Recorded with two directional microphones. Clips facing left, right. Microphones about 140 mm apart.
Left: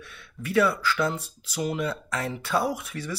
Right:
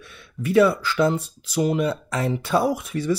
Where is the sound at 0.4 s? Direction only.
25° right (ahead or behind).